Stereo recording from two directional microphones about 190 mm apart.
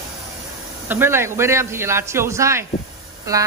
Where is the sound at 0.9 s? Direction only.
10° right (ahead or behind).